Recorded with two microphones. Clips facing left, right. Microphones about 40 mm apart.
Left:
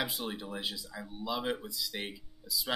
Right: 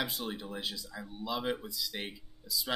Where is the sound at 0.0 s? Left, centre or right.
Centre.